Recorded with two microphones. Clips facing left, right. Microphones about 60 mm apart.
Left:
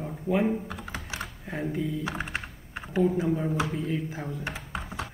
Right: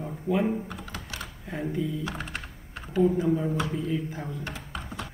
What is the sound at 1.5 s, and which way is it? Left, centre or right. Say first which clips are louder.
Speech: right 1 dB; centre.